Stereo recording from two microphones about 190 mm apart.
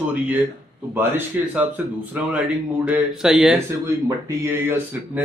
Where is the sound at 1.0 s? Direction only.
10° right (ahead or behind).